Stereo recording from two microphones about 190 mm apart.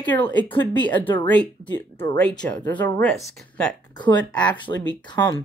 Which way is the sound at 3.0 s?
Centre (ahead or behind).